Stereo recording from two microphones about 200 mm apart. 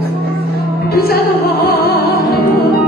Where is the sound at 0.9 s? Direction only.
50° left (ahead or behind).